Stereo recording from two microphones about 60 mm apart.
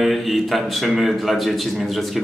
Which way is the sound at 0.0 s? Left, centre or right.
Centre.